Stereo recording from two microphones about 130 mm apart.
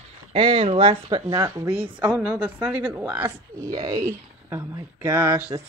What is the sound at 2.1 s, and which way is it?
A woman's voice, 10° right (ahead or behind).